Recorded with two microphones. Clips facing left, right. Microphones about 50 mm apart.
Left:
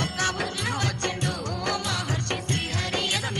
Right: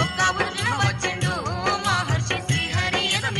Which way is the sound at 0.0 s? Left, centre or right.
Right.